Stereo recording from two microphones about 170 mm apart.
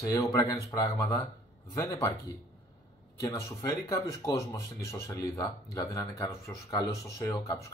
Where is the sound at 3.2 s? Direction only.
20° left (ahead or behind).